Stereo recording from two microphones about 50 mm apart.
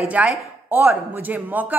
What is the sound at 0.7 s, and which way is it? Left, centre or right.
Speech, right.